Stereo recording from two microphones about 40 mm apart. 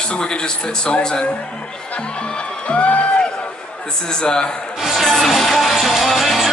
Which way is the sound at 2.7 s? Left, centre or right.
Left.